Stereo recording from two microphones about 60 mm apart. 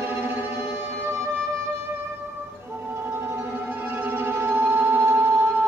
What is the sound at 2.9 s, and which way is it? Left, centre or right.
Music, right.